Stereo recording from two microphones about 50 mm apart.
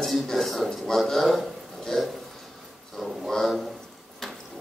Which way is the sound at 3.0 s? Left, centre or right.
Centre.